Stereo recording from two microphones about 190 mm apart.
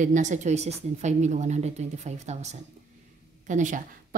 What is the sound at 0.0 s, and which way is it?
A woman's voice, 40° right (ahead or behind).